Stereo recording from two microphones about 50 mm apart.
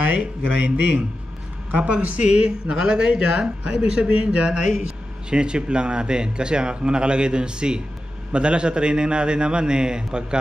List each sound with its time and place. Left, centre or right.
0.6 s a man's voice: right; by 10.2 s centre